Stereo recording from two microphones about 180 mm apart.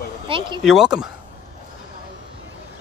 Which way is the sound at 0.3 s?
30° right (ahead or behind).